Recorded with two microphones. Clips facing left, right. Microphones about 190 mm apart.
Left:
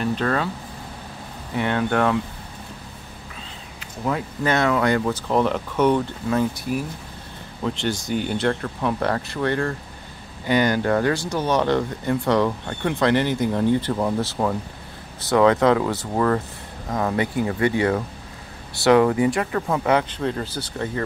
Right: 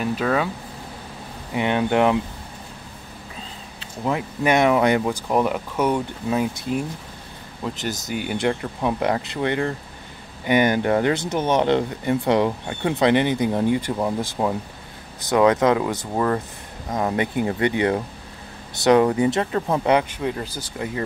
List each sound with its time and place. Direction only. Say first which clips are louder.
0.0 s speech: right 1 dB; 5° right (ahead or behind)
1.5 s speech: right 2 dB; 15° right (ahead or behind)
4.0 s speech: right 1 dB; 15° right (ahead or behind)
7.6 s speech: left 3 dB; 5° right (ahead or behind)